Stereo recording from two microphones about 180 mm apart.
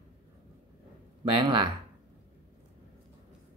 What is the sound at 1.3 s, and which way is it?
Speech, 30° right (ahead or behind).